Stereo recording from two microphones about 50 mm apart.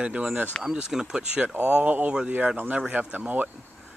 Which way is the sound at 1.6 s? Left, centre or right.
Right.